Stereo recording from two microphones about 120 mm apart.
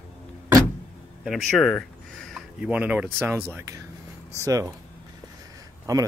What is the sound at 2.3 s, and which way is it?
Speech, 10° right (ahead or behind).